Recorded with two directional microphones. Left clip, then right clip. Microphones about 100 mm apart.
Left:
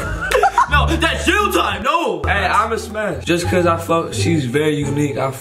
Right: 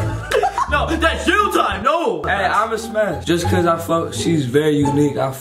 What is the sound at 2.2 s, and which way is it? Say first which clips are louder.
A man's voice: left 2 dB; 25° right (ahead or behind).